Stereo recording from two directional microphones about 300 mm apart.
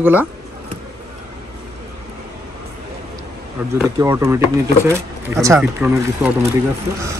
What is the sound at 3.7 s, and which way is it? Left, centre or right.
Speech, centre.